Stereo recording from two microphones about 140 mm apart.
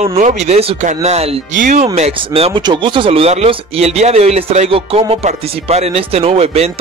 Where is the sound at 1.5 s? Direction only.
65° right (ahead or behind).